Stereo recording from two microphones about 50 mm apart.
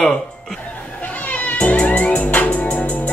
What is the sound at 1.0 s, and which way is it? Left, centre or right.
Music, left.